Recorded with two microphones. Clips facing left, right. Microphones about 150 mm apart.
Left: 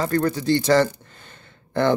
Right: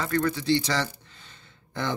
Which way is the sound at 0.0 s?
40° left (ahead or behind).